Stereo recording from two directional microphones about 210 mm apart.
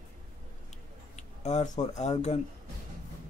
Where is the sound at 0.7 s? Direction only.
30° left (ahead or behind).